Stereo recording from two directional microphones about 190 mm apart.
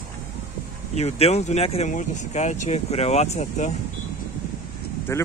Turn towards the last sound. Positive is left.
turn(degrees=15)  # may be behind; listen again after turning